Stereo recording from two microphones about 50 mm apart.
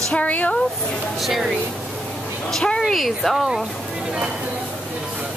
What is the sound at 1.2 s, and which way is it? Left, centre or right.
Speech, centre.